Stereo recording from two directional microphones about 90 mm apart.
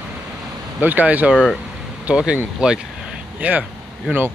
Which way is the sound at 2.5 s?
10° right (ahead or behind).